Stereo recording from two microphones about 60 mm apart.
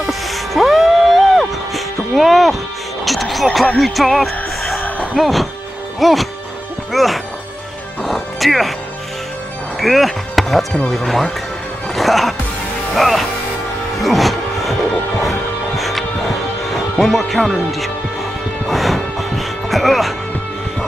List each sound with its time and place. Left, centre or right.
0.0 s music: centre
4.8 s a sound: left
5.1 s speech: centre
8.0 s music: centre
9.8 s speech: centre
11.9 s music: centre
12.9 s speech: centre
13.9 s music: centre
17.0 s speech: centre
18.7 s music: centre